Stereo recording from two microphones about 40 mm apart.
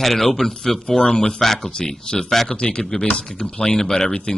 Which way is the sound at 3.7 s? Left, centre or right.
Centre.